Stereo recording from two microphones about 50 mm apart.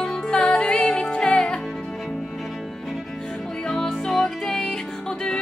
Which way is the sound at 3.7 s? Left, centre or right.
Centre.